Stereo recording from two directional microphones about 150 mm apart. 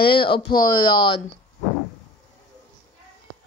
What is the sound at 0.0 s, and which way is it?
Speech, 35° left (ahead or behind).